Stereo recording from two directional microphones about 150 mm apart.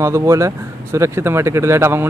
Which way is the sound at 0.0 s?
20° right (ahead or behind).